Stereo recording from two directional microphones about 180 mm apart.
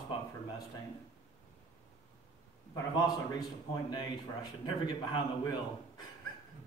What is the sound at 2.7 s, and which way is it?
A man's voice, 20° left (ahead or behind).